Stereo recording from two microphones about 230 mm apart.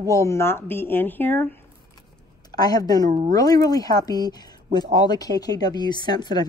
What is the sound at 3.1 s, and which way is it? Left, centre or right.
Speech, right.